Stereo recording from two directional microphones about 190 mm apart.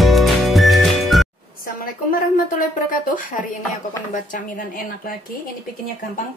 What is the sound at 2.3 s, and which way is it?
Speech, 45° left (ahead or behind).